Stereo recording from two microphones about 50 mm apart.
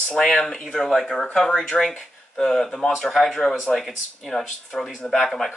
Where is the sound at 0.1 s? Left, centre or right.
Centre.